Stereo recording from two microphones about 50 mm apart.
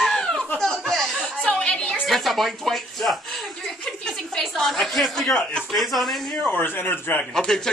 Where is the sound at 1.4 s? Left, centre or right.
Centre.